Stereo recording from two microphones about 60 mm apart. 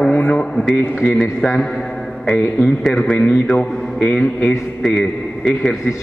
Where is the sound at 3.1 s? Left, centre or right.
Left.